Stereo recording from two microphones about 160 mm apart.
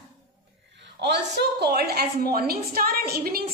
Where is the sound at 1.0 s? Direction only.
90° right.